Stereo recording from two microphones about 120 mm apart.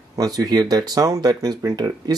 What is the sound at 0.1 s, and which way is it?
Speech, 30° right (ahead or behind).